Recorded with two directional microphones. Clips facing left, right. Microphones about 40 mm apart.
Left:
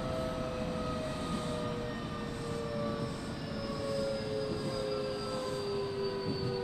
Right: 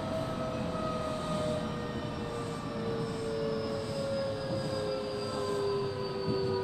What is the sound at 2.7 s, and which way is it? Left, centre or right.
Vehicle, centre.